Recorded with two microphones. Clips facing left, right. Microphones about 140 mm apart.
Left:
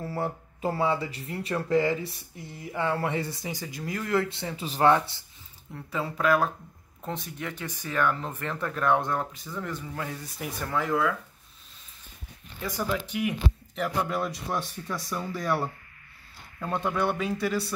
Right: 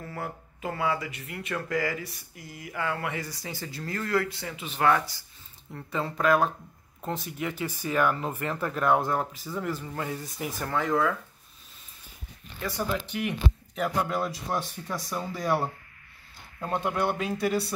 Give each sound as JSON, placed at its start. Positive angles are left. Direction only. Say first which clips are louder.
{"t": 0.0, "sound": "speech", "louder": "left 5 dB", "side_deg": 30}
{"t": 5.8, "sound": "speech", "louder": "even", "side_deg": 5}
{"t": 13.1, "sound": "speech", "louder": "left 1 dB", "side_deg": 5}
{"t": 14.9, "sound": "speech", "louder": "even", "side_deg": -25}